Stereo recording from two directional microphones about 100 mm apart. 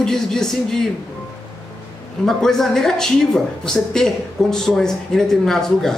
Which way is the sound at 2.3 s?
5° left (ahead or behind).